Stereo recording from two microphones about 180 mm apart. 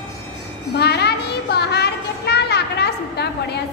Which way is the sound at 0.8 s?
65° left (ahead or behind).